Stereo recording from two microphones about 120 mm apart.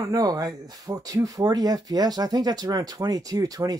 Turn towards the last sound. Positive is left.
turn(degrees=-30)  # may be behind; listen again after turning